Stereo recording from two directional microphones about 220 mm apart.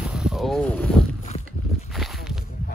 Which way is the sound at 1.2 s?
30° left (ahead or behind).